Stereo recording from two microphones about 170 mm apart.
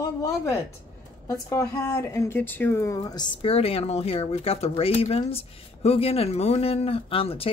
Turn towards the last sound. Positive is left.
turn(degrees=35)  # may be behind; listen again after turning